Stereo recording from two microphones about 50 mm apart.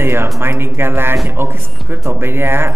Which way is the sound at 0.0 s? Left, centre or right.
Right.